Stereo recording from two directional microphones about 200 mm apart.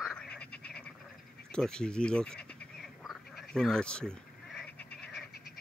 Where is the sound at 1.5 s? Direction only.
5° left (ahead or behind).